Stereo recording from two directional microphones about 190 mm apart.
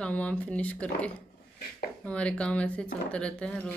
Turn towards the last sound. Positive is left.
turn(degrees=5)  # may be behind; listen again after turning